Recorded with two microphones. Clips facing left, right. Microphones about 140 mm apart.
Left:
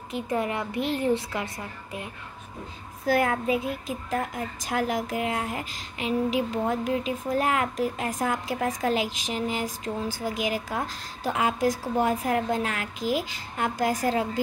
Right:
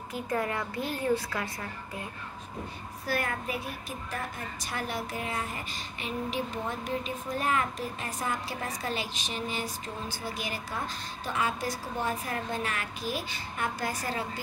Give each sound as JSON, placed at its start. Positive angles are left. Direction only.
{"t": 0.1, "sound": "a woman's voice", "side_deg": 20}
{"t": 3.2, "sound": "a woman's voice", "side_deg": 90}